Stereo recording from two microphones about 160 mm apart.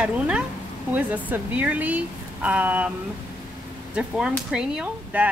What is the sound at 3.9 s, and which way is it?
Speech, 5° right (ahead or behind).